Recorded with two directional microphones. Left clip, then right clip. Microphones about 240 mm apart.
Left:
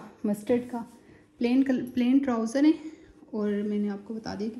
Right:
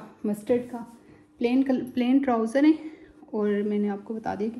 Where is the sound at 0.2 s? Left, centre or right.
Left.